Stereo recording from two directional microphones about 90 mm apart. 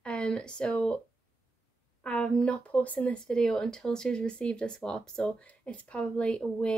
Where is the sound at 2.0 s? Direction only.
10° left (ahead or behind).